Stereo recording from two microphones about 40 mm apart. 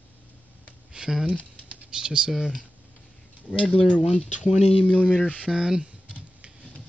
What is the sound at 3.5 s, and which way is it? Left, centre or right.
Speech, centre.